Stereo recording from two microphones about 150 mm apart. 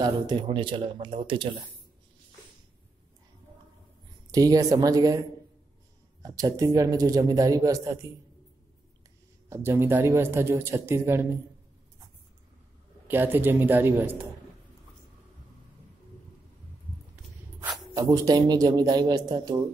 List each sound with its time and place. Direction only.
0.0 s speech: 30° right (ahead or behind)
4.3 s speech: 25° right (ahead or behind)
6.2 s speech: 25° right (ahead or behind)
9.5 s speech: 15° right (ahead or behind)
13.1 s speech: 15° right (ahead or behind)
18.0 s speech: 25° right (ahead or behind)